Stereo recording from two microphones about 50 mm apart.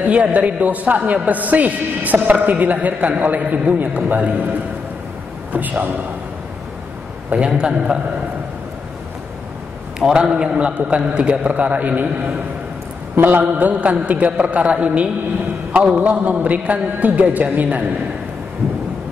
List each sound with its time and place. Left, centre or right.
0.0 s a man's voice: right
5.5 s a man's voice: right
7.2 s a man's voice: right
9.9 s a man's voice: centre; by 12.1 s right
13.1 s a man's voice: right
13.4 s a man's voice: right